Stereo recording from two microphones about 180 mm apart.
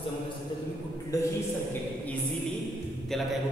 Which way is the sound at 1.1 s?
20° left (ahead or behind).